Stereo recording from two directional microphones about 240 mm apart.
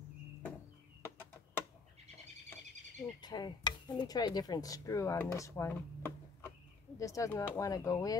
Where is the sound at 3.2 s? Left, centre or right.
Centre.